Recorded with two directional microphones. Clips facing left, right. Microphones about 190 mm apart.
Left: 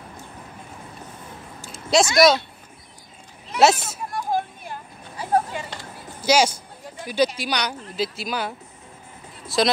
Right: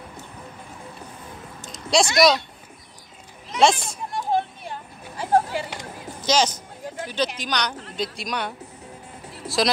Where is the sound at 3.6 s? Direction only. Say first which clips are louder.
Left 1 dB; 5° left (ahead or behind).